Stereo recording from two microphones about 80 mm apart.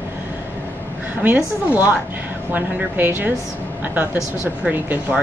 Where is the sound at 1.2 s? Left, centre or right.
Right.